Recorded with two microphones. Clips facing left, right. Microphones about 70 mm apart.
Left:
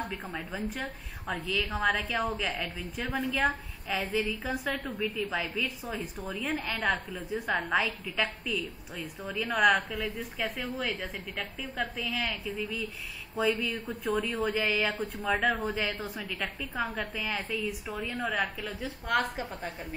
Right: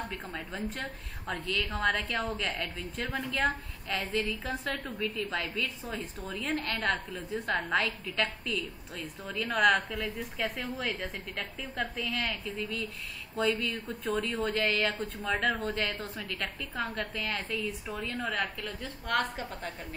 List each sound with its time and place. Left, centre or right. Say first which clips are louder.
0.0 s a woman's voice: left 2 dB; centre
16.9 s a woman's voice: left 1 dB; centre
17.2 s a woman's voice: left 2 dB; centre